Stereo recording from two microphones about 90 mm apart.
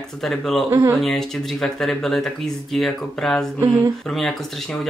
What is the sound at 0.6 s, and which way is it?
Speech, 30° right (ahead or behind).